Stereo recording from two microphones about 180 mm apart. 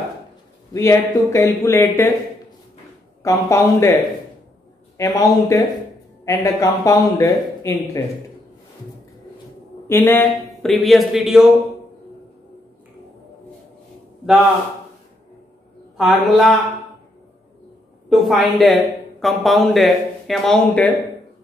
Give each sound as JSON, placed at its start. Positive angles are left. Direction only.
{"t": 0.7, "sound": "speech", "side_deg": 15}
{"t": 3.2, "sound": "speech", "side_deg": 15}
{"t": 9.8, "sound": "speech", "side_deg": 10}
{"t": 10.5, "sound": "speech", "side_deg": 0}
{"t": 16.0, "sound": "speech", "side_deg": 0}
{"t": 18.1, "sound": "speech", "side_deg": 0}